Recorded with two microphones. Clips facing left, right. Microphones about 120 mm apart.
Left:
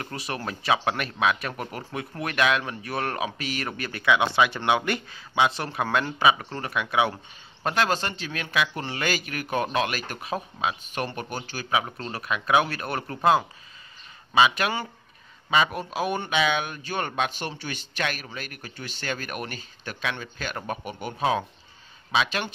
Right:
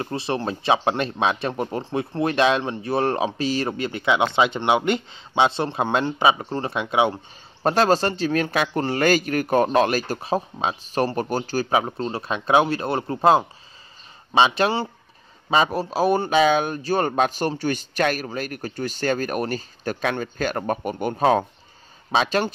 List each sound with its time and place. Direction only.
0.0 s speech: 25° right (ahead or behind)
7.6 s speech: 35° right (ahead or behind)
12.0 s speech: 25° right (ahead or behind)